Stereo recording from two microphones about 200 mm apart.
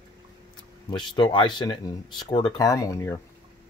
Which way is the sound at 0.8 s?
20° left (ahead or behind).